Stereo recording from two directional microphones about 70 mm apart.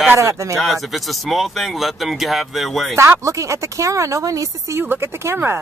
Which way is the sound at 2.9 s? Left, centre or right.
Right.